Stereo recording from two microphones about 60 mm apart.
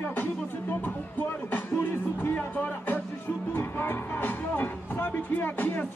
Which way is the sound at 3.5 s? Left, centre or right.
Left.